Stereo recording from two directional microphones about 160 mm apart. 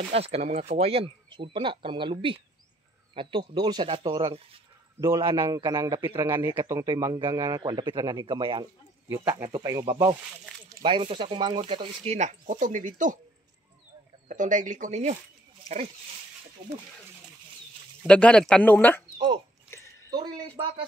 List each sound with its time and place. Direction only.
0.1 s speech: 40° right (ahead or behind)
5.4 s speech: 25° right (ahead or behind)
9.1 s speech: 20° right (ahead or behind)
10.8 s speech: 30° right (ahead or behind); by 13.2 s 55° right (ahead or behind)
14.2 s speech: 55° right (ahead or behind)
18.0 s speech: 5° left (ahead or behind)
19.1 s speech: 30° right (ahead or behind)
19.7 s a sound: 20° left (ahead or behind)